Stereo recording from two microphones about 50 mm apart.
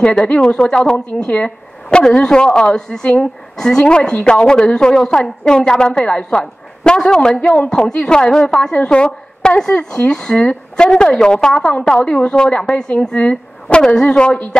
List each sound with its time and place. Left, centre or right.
0.0 s a woman's voice: centre